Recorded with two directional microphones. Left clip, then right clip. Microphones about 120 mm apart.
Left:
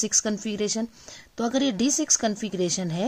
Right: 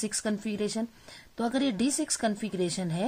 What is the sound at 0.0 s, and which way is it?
A woman's voice, 35° left (ahead or behind).